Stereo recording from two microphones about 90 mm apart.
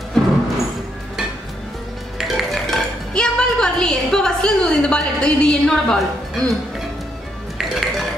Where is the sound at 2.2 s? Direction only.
Centre (ahead or behind).